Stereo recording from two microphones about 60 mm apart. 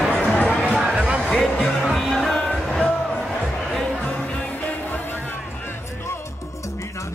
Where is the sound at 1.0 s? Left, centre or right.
Centre.